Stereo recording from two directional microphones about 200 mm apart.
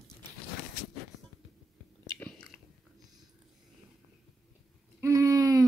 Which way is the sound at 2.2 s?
5° left (ahead or behind).